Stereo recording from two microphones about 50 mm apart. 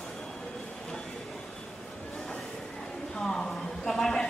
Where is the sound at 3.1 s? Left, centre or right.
Centre.